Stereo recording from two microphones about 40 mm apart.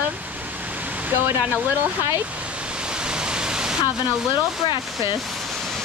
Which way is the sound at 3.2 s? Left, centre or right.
Centre.